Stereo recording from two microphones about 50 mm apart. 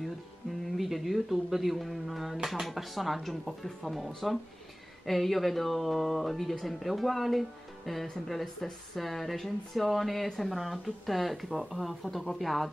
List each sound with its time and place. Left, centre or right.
0.7 s speech: centre